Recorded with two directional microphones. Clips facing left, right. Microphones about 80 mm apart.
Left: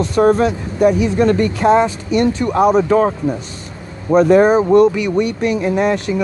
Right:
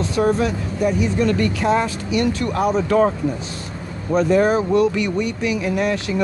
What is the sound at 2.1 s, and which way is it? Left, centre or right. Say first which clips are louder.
Speech: left 5 dB; left.